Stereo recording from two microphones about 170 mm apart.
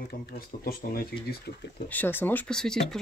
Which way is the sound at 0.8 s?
55° left (ahead or behind).